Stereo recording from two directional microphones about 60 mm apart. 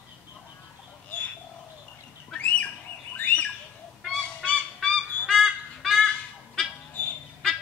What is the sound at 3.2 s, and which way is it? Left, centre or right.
Bird, left.